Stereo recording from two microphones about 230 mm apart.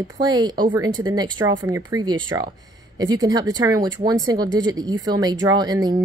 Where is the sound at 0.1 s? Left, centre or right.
Centre.